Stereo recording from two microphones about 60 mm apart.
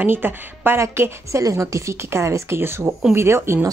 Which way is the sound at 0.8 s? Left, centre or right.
Right.